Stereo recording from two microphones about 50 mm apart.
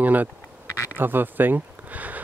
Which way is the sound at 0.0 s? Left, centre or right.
Right.